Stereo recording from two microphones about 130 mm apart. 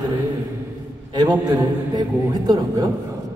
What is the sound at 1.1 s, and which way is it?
A man's voice, 30° right (ahead or behind).